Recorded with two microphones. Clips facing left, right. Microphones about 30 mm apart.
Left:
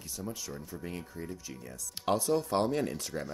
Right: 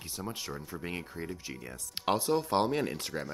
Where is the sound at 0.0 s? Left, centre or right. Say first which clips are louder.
Right 1 dB; right.